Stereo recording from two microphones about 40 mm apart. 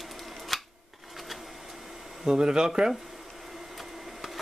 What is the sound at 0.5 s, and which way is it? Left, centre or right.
Camera, centre.